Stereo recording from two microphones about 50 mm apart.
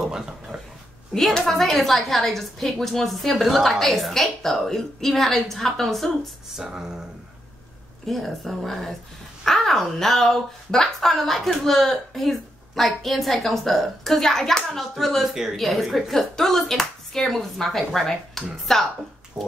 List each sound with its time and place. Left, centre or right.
1.1 s speech: centre
6.5 s speech: centre
8.1 s speech: centre
19.4 s speech: centre